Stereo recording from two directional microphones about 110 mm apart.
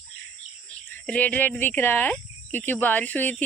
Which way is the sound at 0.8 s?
15° left (ahead or behind).